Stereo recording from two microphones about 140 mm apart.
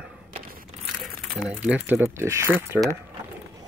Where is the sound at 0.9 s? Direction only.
5° right (ahead or behind).